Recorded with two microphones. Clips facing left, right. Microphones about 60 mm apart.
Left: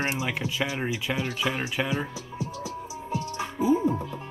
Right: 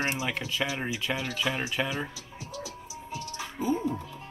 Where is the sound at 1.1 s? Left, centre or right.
Centre.